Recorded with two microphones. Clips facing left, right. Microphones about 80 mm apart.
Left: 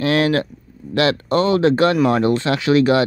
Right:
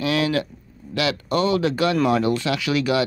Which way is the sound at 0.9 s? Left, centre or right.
Left.